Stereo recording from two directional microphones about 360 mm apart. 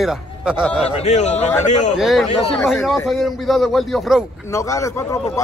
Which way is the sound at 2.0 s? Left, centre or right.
Centre.